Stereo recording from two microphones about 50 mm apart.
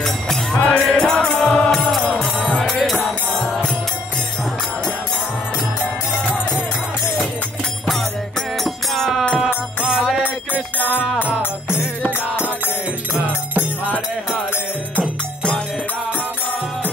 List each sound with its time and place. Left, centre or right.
0.0 s music: centre
2.7 s music: centre
8.6 s music: centre
15.0 s music: left